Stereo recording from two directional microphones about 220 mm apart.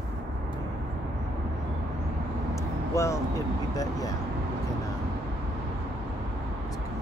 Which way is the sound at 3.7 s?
15° left (ahead or behind).